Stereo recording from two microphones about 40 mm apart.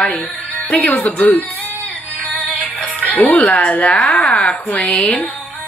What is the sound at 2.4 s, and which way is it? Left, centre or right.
Music, left.